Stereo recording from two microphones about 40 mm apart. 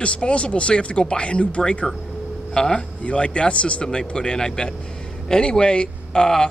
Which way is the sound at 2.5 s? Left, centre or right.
Centre.